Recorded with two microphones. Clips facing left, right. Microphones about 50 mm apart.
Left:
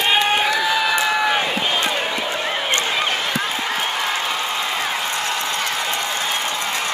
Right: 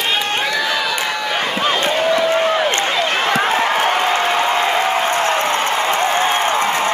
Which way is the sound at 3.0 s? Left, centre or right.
Right.